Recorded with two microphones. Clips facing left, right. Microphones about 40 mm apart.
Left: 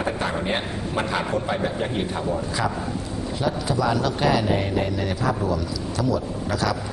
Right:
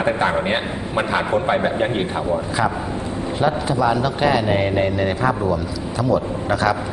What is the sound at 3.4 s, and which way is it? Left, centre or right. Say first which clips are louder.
A man's voice: right 5 dB; right.